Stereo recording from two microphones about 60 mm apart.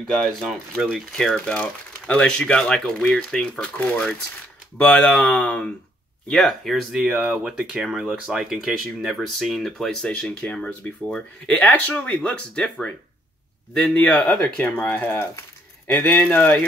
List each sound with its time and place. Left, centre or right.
0.0 s speech: centre
1.1 s speech: centre
3.7 s speech: left
5.2 s speech: centre
6.2 s speech: centre
7.0 s speech: centre
9.2 s speech: centre
13.9 s speech: left
14.2 s speech: centre
14.6 s speech: left
15.9 s speech: centre
16.3 s speech: left